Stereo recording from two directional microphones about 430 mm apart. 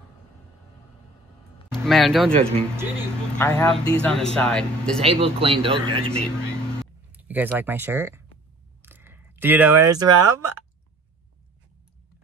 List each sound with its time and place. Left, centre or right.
1.7 s speech: centre
5.0 s speech: centre
7.2 s speech: centre
8.8 s a sound: centre